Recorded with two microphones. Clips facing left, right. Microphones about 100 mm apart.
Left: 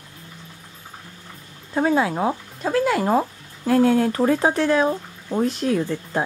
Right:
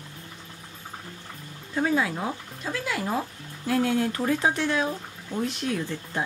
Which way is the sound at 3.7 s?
40° left (ahead or behind).